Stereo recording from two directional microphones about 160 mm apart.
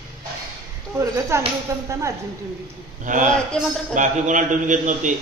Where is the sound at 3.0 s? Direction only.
50° right (ahead or behind).